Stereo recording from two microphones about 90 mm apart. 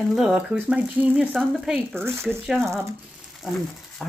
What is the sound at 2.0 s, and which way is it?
Speech, 25° right (ahead or behind).